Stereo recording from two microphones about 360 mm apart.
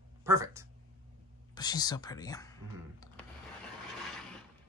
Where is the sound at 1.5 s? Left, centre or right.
Centre.